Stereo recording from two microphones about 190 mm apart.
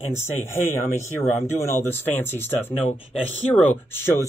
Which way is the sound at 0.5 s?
15° left (ahead or behind).